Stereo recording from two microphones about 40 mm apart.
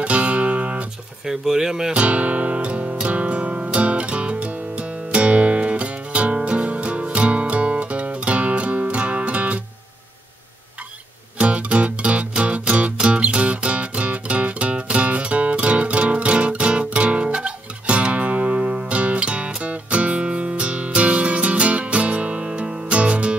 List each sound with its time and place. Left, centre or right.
0.0 s music: right
1.2 s speech: centre
2.0 s music: right
11.3 s music: right